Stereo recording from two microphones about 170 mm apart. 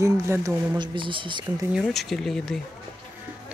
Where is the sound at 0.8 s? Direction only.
30° right (ahead or behind).